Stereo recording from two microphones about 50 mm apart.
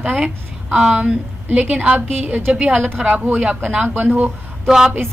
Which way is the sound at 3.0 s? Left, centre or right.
Right.